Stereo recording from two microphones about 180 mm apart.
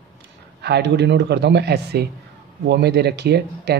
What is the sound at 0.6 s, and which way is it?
Speech, 65° right (ahead or behind).